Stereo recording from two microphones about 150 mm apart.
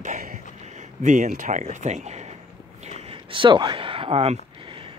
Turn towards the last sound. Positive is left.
turn(degrees=-40)  # may be behind; listen again after turning